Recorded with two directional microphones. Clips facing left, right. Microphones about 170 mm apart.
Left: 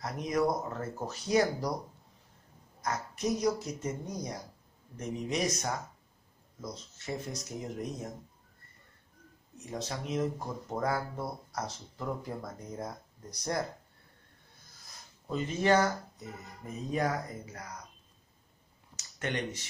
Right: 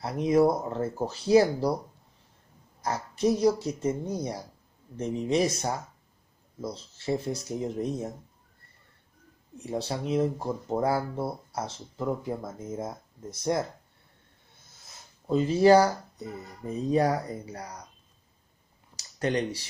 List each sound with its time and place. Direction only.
0.0 s speech: 30° right (ahead or behind)
2.8 s speech: 30° right (ahead or behind)
9.6 s speech: 30° right (ahead or behind)
14.8 s speech: 30° right (ahead or behind)
18.9 s speech: 35° right (ahead or behind)